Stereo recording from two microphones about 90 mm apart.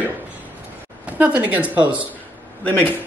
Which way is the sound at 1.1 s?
20° right (ahead or behind).